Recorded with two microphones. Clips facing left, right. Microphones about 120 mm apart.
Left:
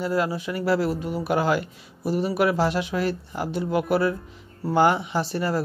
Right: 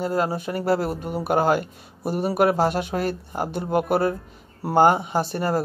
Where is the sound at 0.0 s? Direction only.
45° right (ahead or behind).